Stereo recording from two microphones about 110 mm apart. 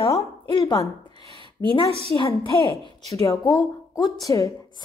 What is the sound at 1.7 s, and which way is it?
Speech, 50° left (ahead or behind).